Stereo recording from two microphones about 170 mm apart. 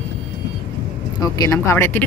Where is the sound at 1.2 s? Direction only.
20° left (ahead or behind).